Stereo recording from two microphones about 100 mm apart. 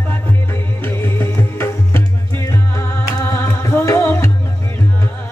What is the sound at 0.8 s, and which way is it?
Music, 25° left (ahead or behind).